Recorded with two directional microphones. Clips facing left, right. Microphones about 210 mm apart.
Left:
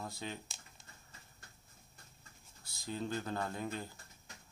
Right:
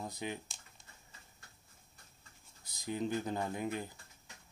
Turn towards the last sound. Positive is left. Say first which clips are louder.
# right 3 dB
turn(degrees=-15)  # may be behind; listen again after turning